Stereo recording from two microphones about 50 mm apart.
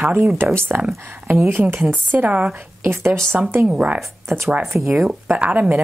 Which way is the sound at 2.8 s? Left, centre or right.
Right.